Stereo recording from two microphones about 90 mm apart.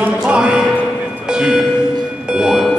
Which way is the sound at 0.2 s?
10° right (ahead or behind).